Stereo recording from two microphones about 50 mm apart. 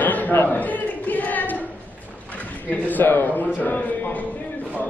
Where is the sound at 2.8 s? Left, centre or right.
Left.